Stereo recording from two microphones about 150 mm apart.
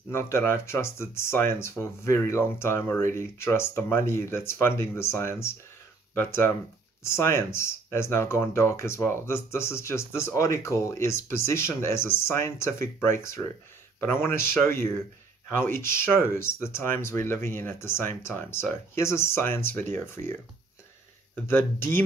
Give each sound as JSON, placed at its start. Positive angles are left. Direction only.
{"t": 0.1, "sound": "speech", "side_deg": 15}
{"t": 21.5, "sound": "speech", "side_deg": 15}